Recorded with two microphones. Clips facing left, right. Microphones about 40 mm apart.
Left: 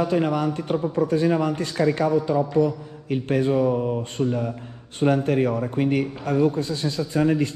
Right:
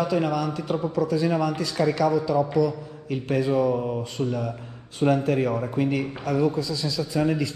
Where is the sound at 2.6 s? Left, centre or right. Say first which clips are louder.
Left 2 dB; left.